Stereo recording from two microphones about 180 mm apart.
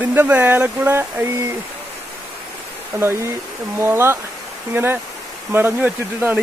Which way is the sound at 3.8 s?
15° right (ahead or behind).